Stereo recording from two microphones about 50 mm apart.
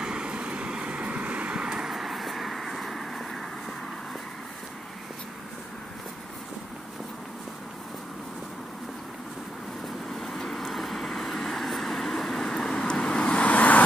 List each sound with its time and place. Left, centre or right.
0.0 s vehicle: centre
1.9 s vehicle: centre
10.1 s vehicle: centre; by 13.8 s left